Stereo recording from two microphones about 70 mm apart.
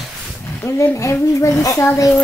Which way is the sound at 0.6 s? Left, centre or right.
Left.